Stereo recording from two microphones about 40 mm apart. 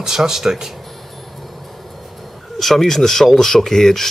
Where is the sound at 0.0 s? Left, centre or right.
Centre.